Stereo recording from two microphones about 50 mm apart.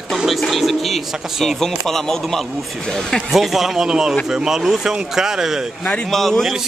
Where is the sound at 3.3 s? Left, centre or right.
Centre.